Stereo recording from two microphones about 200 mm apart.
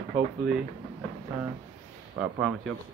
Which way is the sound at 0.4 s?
5° right (ahead or behind).